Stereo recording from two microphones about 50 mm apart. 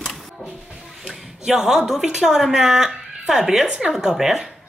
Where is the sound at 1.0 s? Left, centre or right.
Centre.